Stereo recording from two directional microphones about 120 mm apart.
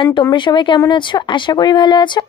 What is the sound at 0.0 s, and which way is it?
Speech, 40° left (ahead or behind).